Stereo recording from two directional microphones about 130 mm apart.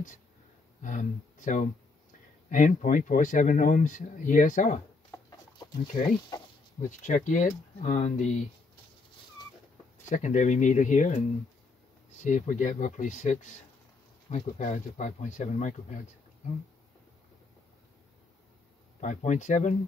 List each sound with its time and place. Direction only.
0.8 s speech: 80° left
2.5 s speech: 90° left
6.3 s speech: 30° left (ahead or behind)
6.8 s speech: 75° left (ahead or behind)
10.0 s speech: 70° left (ahead or behind)
18.9 s speech: 65° left (ahead or behind)